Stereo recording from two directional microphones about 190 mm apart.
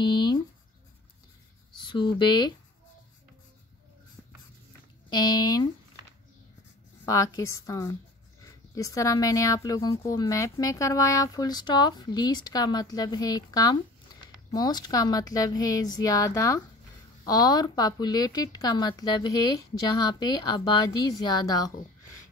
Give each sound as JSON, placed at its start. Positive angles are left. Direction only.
{"t": 0.0, "sound": "writing", "side_deg": 25}
{"t": 1.8, "sound": "speech", "side_deg": 25}
{"t": 5.1, "sound": "a woman's voice", "side_deg": 20}
{"t": 7.1, "sound": "a woman's voice", "side_deg": 15}
{"t": 20.2, "sound": "a woman's voice", "side_deg": 20}